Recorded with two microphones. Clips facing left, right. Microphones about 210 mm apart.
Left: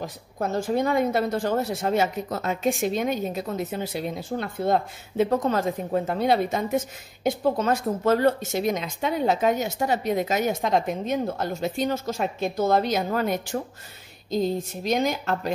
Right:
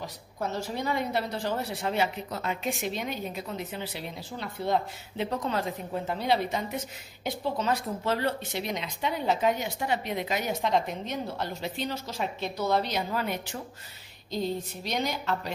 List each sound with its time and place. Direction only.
0.0 s speech: 50° left (ahead or behind)